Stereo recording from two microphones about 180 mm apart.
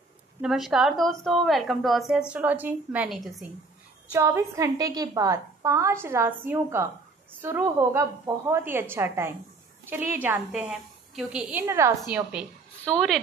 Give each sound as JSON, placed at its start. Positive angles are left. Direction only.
{"t": 0.4, "sound": "a woman's voice", "side_deg": 0}
{"t": 4.1, "sound": "a woman's voice", "side_deg": -15}
{"t": 12.8, "sound": "a woman's voice", "side_deg": 5}